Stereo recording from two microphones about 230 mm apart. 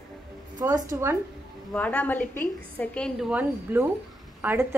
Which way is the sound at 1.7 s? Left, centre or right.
Centre.